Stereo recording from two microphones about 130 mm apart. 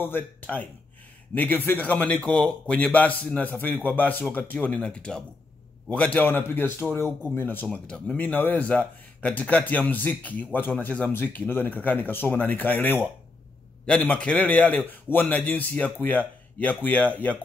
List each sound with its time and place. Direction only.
0.0 s speech: 15° left (ahead or behind)